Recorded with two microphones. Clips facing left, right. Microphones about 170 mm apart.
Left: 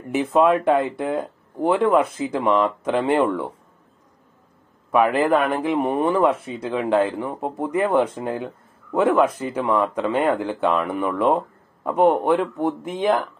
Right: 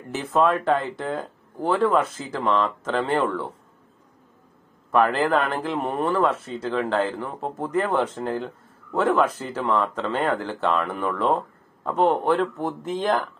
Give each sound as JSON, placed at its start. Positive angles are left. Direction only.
{"t": 0.1, "sound": "speech", "side_deg": 10}
{"t": 4.9, "sound": "speech", "side_deg": 10}